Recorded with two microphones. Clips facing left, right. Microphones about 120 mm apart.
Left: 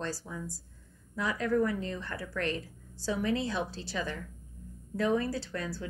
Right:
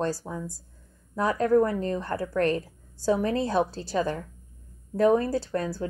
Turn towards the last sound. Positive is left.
turn(degrees=-40)  # may be behind; listen again after turning